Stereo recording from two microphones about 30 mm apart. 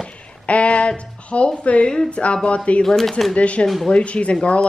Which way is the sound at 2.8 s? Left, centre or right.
Centre.